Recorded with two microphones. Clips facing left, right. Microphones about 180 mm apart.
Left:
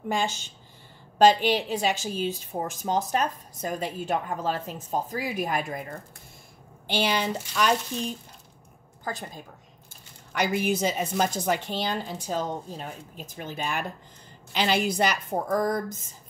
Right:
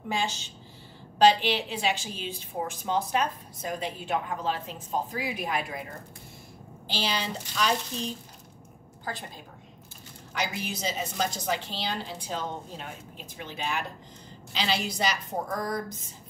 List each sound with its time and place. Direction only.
0.1 s a woman's voice: 50° left (ahead or behind)
6.9 s a woman's voice: 55° left (ahead or behind)
9.0 s a woman's voice: 45° left (ahead or behind)